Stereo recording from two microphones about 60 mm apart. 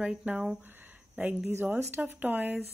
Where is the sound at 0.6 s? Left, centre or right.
Right.